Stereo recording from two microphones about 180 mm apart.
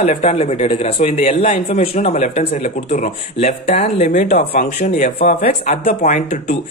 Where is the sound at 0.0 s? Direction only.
40° left (ahead or behind).